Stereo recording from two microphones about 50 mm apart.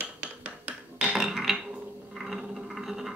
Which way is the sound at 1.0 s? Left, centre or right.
Centre.